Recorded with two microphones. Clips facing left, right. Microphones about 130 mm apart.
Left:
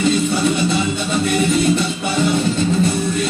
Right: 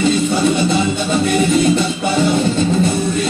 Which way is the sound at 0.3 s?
30° right (ahead or behind).